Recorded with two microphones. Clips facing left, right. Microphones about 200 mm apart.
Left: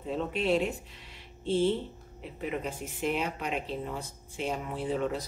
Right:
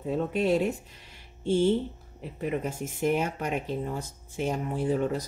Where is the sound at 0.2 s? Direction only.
45° right (ahead or behind).